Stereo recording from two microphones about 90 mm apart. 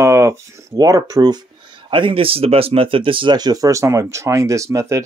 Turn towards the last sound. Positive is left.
turn(degrees=-35)  # may be behind; listen again after turning